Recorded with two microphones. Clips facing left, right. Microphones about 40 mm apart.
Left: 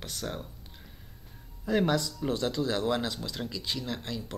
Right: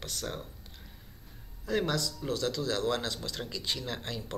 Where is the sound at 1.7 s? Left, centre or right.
Centre.